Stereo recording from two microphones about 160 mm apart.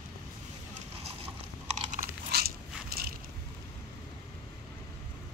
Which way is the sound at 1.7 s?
50° right (ahead or behind).